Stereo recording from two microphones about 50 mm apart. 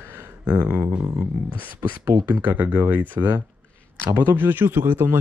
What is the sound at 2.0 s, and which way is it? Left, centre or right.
Speech, right.